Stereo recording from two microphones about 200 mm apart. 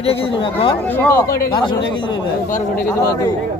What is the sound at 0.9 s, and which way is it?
Speech, 10° left (ahead or behind).